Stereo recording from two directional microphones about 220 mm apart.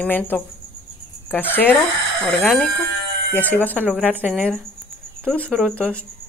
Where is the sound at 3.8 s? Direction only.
5° right (ahead or behind).